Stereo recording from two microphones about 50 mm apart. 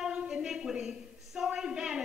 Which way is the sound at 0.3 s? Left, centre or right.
Centre.